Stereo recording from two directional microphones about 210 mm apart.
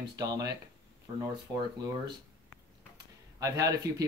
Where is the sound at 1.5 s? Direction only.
15° right (ahead or behind).